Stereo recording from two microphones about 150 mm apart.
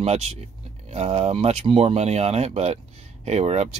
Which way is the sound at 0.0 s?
45° right (ahead or behind).